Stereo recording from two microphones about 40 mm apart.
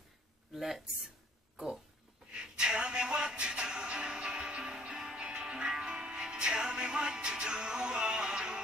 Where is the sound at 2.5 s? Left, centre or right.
Right.